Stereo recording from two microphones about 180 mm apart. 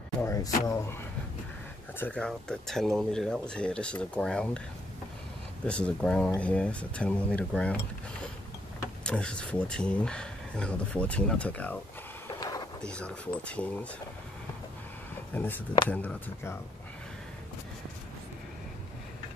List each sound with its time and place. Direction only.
0.2 s speech: 15° left (ahead or behind)
2.0 s speech: 5° left (ahead or behind)
5.7 s speech: 5° left (ahead or behind)
9.0 s speech: 5° left (ahead or behind)
12.4 s a sound: 20° left (ahead or behind)
12.8 s speech: 5° left (ahead or behind)
15.9 s speech: 10° left (ahead or behind)